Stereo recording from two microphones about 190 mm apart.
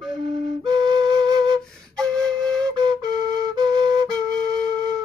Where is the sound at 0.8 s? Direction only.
20° right (ahead or behind).